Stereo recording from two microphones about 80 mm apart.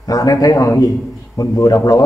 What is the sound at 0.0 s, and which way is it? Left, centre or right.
A man's voice, left.